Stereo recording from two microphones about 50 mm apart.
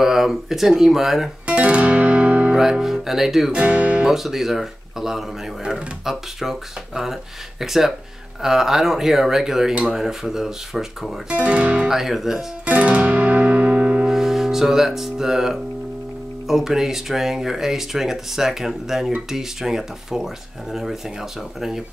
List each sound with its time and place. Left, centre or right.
0.0 s speech: centre
1.4 s music: right
2.5 s speech: centre
3.5 s speech: right
4.0 s speech: centre
11.2 s speech: right
11.9 s speech: centre
12.6 s music: right
14.1 s speech: centre